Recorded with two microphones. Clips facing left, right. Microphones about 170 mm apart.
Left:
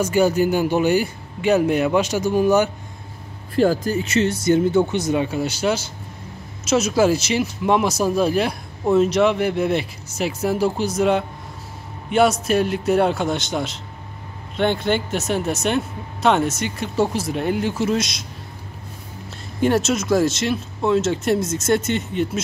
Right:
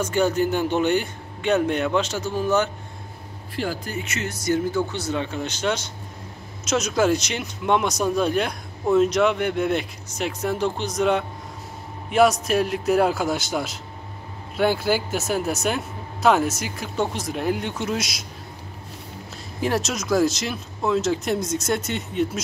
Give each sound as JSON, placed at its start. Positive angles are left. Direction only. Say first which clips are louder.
{"t": 0.0, "sound": "a man's voice", "louder": "left 4 dB", "side_deg": 10}
{"t": 3.5, "sound": "speech", "louder": "left 10 dB", "side_deg": 40}
{"t": 19.6, "sound": "speech", "louder": "left 6 dB", "side_deg": 0}